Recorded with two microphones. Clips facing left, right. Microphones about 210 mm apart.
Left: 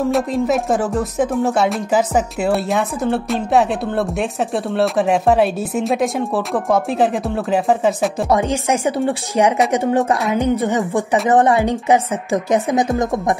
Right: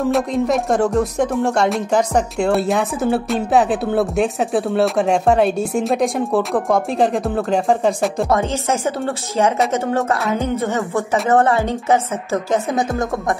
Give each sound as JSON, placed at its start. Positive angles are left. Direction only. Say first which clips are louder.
{"t": 0.1, "sound": "speech", "louder": "even", "side_deg": 0}
{"t": 8.3, "sound": "speech", "louder": "left 2 dB", "side_deg": 15}